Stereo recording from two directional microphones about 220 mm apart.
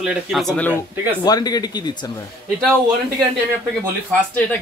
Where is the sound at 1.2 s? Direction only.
15° left (ahead or behind).